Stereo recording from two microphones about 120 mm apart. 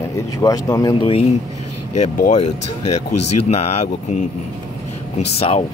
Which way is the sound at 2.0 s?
80° left.